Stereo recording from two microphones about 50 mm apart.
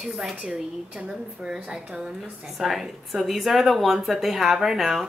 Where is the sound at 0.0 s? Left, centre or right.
Centre.